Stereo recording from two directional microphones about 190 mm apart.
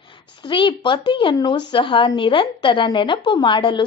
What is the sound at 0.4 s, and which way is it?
A woman's voice, 25° left (ahead or behind).